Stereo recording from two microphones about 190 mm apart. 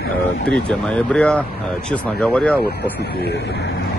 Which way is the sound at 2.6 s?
60° left (ahead or behind).